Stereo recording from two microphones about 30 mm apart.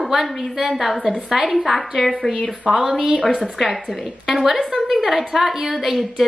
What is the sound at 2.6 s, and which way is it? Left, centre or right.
Speech, centre.